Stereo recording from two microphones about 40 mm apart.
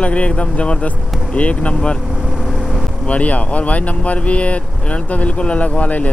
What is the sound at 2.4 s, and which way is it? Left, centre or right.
Vehicle, centre.